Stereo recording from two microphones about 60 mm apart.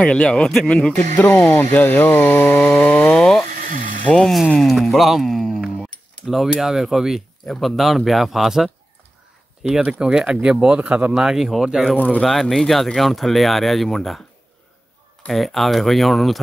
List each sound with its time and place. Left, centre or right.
0.0 s speech: centre
1.1 s speech: left
2.8 s a sound: left
3.2 s a sound: centre
4.6 s speech: centre; by 11.1 s right
11.1 s speech: centre
15.2 s speech: centre